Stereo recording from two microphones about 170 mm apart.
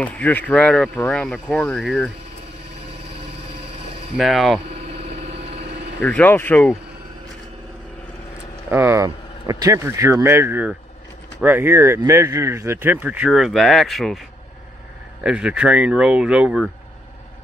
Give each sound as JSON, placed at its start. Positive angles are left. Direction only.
{"t": 0.0, "sound": "speech", "side_deg": 10}
{"t": 4.2, "sound": "speech", "side_deg": 0}
{"t": 4.8, "sound": "a sound", "side_deg": -35}
{"t": 5.9, "sound": "speech", "side_deg": 10}
{"t": 8.6, "sound": "speech", "side_deg": -15}
{"t": 15.2, "sound": "speech", "side_deg": -5}